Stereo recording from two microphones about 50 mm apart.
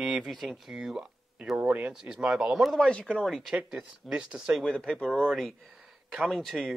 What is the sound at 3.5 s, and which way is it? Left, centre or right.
Speech, centre.